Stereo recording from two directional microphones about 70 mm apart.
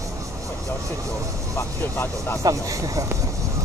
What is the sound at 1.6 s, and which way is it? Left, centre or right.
Speech, left.